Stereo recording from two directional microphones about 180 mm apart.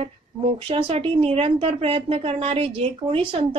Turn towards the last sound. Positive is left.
turn(degrees=-30)  # may be behind; listen again after turning